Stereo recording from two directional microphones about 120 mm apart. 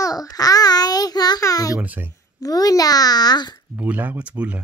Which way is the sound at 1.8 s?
15° right (ahead or behind).